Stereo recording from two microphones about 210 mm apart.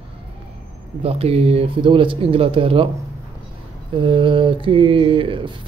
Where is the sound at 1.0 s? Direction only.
25° right (ahead or behind).